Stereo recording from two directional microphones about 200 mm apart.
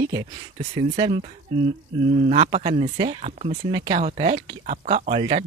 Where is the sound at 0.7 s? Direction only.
25° right (ahead or behind).